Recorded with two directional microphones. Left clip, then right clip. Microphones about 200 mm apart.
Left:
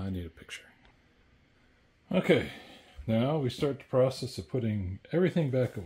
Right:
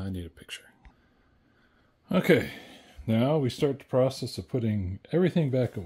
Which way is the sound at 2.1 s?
50° right (ahead or behind).